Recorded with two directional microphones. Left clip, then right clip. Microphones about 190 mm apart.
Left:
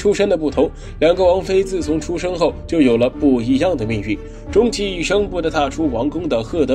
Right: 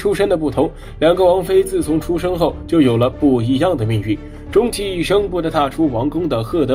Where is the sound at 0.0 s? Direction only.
15° left (ahead or behind).